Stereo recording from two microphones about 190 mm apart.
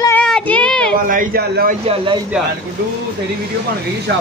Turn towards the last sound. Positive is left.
turn(degrees=-65)  # may be behind; listen again after turning